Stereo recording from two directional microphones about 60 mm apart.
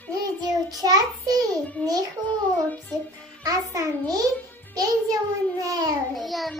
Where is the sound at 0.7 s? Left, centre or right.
Right.